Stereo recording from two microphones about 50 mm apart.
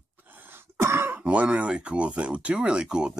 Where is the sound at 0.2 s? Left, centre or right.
Right.